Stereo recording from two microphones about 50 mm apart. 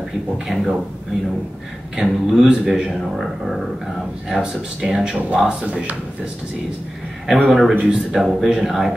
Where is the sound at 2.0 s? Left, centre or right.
Centre.